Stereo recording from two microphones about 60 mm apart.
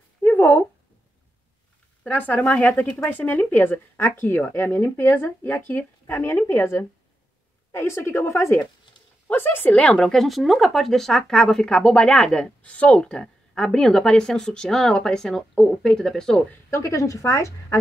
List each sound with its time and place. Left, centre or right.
0.2 s a sound: left
2.0 s speech: left
6.4 s a woman's voice: left
9.3 s speech: left
9.8 s speech: centre
16.7 s a woman's voice: left